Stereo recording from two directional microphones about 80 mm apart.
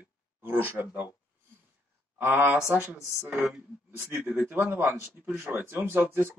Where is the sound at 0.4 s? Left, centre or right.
Right.